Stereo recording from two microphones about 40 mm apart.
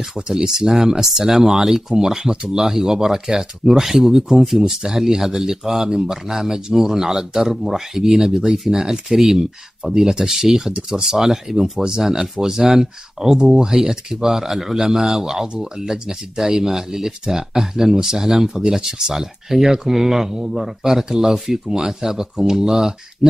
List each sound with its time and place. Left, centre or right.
0.1 s speech: centre
15.4 s speech: right
15.9 s speech: centre